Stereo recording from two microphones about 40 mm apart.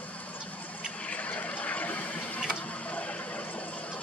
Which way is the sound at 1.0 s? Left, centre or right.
Left.